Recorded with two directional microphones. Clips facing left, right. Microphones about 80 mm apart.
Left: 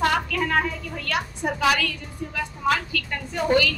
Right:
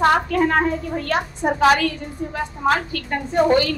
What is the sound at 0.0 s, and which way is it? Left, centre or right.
A woman's voice, right.